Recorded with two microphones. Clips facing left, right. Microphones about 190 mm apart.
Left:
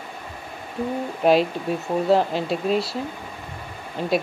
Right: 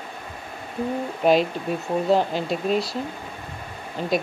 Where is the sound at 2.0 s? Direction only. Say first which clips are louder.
Left 2 dB; centre (ahead or behind).